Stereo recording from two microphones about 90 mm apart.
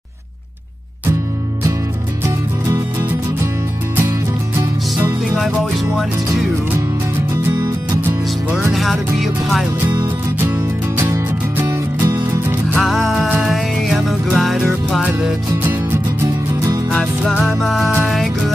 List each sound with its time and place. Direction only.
2.2 s music: 35° right (ahead or behind)
4.6 s music: 30° right (ahead or behind)
5.4 s music: centre (ahead or behind)
7.5 s music: 35° right (ahead or behind)
8.7 s music: centre (ahead or behind)
10.4 s music: 30° right (ahead or behind)
12.8 s music: centre (ahead or behind)
15.6 s music: 25° right (ahead or behind)
17.4 s music: 5° left (ahead or behind)